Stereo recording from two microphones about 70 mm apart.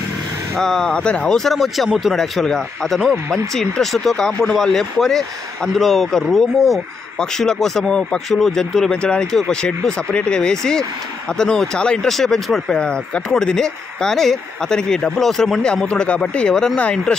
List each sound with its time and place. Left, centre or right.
0.6 s speech: centre
1.4 s speech: centre